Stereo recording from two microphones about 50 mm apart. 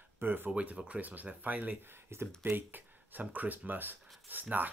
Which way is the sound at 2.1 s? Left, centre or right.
Right.